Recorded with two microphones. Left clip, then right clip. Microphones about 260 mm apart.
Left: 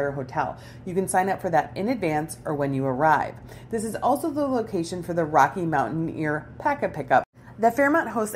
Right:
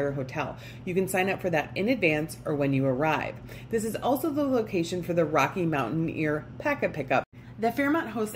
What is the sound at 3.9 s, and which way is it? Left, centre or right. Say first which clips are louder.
Speech: left 6 dB; centre.